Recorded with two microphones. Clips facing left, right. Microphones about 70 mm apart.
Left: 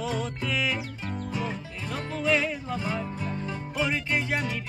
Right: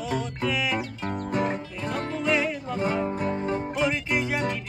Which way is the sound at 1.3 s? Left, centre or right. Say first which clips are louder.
Right 7 dB; right.